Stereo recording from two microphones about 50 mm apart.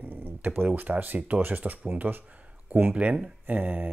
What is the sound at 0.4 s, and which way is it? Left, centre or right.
Speech, right.